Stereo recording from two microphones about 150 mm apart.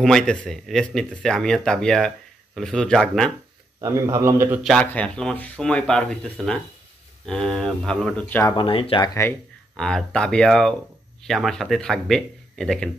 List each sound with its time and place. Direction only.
0.0 s speech: 5° left (ahead or behind)
3.8 s a man's voice: 20° right (ahead or behind)
4.6 s speech: 5° left (ahead or behind)
8.5 s speech: 35° left (ahead or behind)
9.8 s speech: 5° left (ahead or behind)